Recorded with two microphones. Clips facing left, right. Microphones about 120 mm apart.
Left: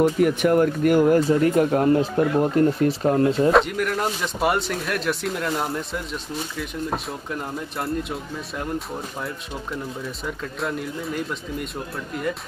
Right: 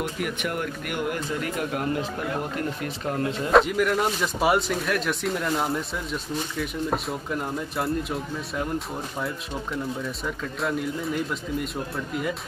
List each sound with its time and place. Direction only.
0.0 s speech: 40° left (ahead or behind)
3.5 s speech: centre (ahead or behind)